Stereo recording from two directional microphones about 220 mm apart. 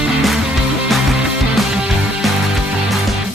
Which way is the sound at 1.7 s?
5° right (ahead or behind).